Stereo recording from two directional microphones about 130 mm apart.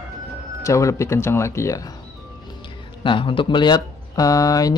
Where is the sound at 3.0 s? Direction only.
40° left (ahead or behind).